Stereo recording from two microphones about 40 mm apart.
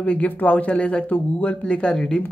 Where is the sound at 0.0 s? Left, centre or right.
Left.